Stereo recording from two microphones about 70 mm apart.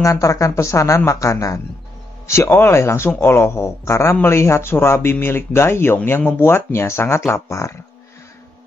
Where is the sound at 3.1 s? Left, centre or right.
Left.